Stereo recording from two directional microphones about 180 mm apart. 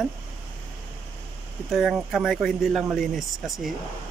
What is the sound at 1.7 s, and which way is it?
Speech, centre (ahead or behind).